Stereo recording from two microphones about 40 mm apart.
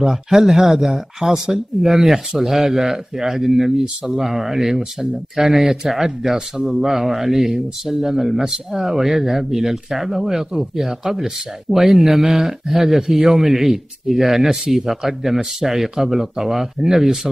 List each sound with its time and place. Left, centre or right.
0.0 s speech: centre